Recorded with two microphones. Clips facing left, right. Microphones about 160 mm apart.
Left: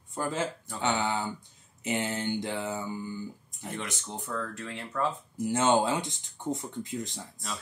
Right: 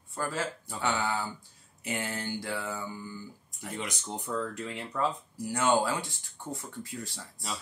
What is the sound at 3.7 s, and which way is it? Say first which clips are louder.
Speech: right 1 dB; 15° right (ahead or behind).